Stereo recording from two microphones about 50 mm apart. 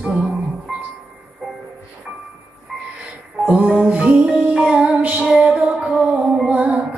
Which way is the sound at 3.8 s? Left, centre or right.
Right.